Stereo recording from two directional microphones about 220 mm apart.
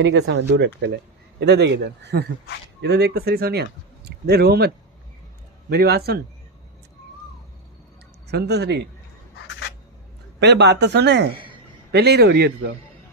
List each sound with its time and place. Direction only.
0.0 s speech: 55° right (ahead or behind)
8.3 s speech: 50° right (ahead or behind)
10.4 s speech: 50° right (ahead or behind)